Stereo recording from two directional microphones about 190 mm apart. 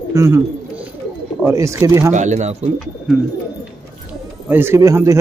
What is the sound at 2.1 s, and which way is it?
Speech, 40° right (ahead or behind).